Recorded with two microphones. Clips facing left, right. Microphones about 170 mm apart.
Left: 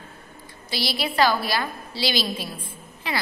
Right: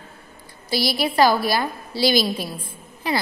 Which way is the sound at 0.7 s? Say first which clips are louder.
Right 5 dB; 45° right (ahead or behind).